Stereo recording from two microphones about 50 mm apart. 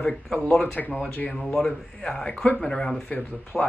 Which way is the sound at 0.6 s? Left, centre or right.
Left.